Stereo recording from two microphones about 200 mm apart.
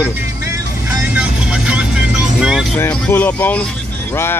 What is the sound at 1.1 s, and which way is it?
Vehicle, 5° right (ahead or behind).